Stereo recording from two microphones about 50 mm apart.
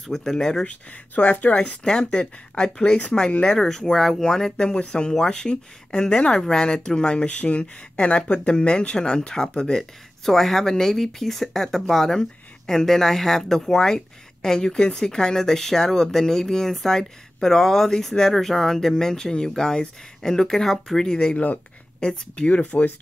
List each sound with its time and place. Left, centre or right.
0.0 s speech: centre
1.1 s speech: left
3.5 s speech: centre
10.2 s speech: centre; by 22.9 s left